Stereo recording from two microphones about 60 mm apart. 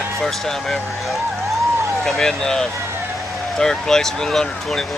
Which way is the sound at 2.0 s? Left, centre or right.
Centre.